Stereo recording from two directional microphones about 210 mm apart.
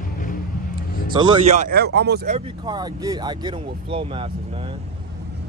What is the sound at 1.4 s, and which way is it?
Speech, 35° right (ahead or behind).